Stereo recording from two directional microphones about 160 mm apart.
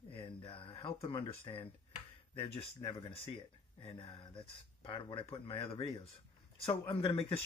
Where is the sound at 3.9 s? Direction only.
35° left (ahead or behind).